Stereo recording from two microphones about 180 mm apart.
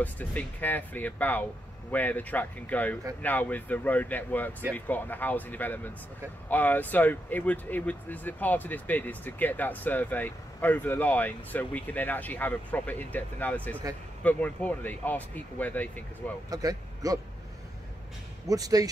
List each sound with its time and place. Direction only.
0.0 s speech: 10° left (ahead or behind)
16.4 s a man's voice: 20° right (ahead or behind)
18.5 s speech: 20° right (ahead or behind)